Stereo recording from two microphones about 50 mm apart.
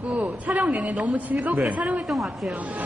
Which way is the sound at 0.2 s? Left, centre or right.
Right.